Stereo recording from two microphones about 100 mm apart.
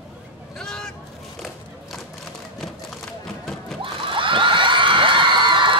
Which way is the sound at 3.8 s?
55° right (ahead or behind).